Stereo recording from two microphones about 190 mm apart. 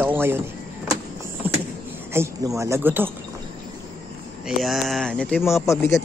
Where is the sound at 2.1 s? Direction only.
15° right (ahead or behind).